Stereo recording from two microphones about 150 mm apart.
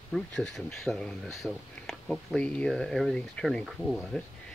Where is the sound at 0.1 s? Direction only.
5° left (ahead or behind).